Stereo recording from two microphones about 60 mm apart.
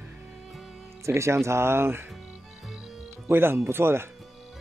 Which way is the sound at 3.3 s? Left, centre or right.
Right.